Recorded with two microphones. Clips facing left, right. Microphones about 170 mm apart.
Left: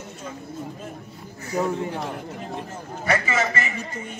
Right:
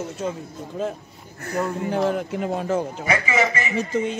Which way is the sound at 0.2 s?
75° right (ahead or behind).